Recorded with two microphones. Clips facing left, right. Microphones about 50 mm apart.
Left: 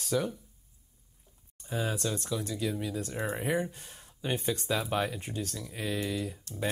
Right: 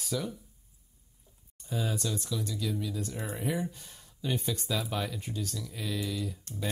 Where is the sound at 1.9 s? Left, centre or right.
Left.